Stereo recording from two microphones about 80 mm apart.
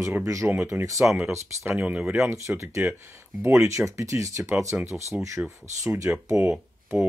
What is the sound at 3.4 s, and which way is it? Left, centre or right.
Speech, right.